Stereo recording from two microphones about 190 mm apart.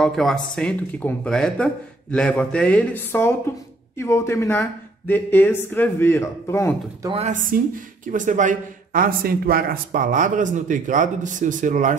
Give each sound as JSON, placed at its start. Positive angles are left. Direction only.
{"t": 0.0, "sound": "speech", "side_deg": 0}
{"t": 7.0, "sound": "speech", "side_deg": -30}